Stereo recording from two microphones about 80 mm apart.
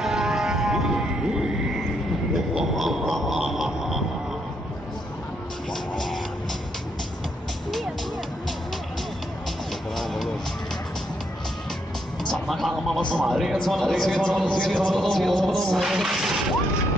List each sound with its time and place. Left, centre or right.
0.0 s a sound: centre
5.7 s music: centre
9.9 s music: centre
12.3 s music: centre
13.1 s speech: centre